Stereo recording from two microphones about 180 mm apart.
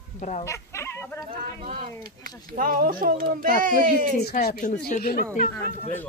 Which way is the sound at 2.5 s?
55° right (ahead or behind).